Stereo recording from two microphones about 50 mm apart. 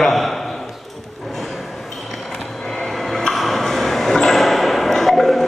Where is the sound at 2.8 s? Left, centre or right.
Centre.